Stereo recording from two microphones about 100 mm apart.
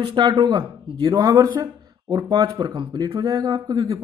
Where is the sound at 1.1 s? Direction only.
35° right (ahead or behind).